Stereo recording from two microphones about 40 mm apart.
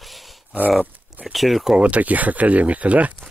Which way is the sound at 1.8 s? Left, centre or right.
Right.